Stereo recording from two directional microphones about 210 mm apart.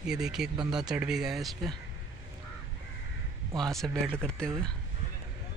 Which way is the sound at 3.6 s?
Centre (ahead or behind).